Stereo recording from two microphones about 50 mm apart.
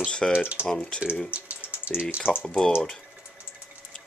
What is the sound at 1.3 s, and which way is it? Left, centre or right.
Typing, right.